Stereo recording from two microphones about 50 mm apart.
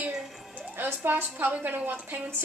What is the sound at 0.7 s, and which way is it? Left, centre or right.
A woman's voice, right.